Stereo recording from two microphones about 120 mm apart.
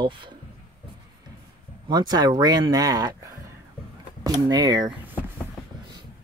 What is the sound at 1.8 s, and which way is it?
Speech, 35° right (ahead or behind).